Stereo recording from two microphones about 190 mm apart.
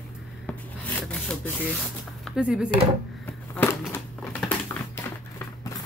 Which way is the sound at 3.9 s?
10° left (ahead or behind).